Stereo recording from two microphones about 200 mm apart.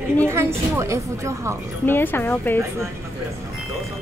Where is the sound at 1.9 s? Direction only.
10° left (ahead or behind).